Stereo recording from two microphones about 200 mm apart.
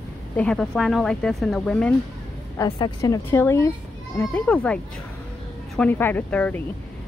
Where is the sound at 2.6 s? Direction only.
15° left (ahead or behind).